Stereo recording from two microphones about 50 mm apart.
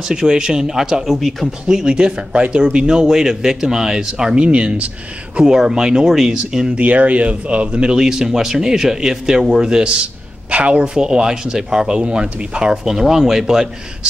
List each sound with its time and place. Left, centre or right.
0.0 s speech: centre
1.7 s speech: centre
5.4 s speech: centre
6.8 s speech: right
11.0 s speech: centre